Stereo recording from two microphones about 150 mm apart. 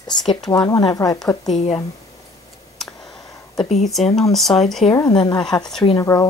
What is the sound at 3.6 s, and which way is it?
Speech, 45° left (ahead or behind).